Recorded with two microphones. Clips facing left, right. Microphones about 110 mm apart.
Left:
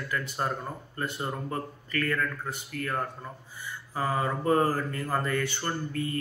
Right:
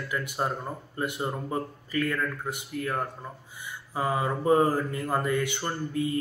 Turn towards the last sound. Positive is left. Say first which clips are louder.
# right 2 dB
turn(degrees=-15)  # may be behind; listen again after turning